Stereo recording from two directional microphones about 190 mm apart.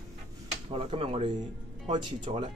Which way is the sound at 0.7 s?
30° right (ahead or behind).